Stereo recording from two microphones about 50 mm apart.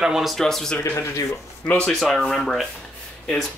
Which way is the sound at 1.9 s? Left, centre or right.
Centre.